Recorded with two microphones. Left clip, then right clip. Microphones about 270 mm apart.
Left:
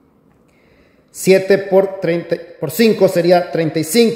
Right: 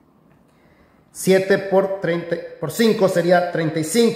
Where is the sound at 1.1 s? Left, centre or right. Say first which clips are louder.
Left 5 dB; centre.